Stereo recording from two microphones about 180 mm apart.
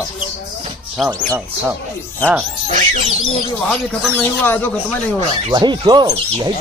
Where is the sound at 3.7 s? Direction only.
10° left (ahead or behind).